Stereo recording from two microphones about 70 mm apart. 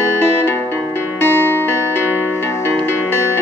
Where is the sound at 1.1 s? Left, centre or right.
Left.